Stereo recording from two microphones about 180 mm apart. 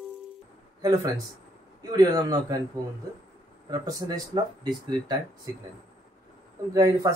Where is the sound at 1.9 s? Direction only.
20° right (ahead or behind).